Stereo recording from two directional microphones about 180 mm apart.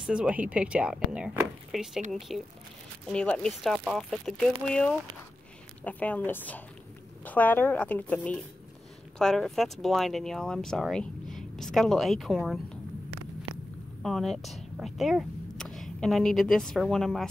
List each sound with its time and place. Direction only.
0.0 s speech: 5° right (ahead or behind)
14.0 s speech: centre (ahead or behind)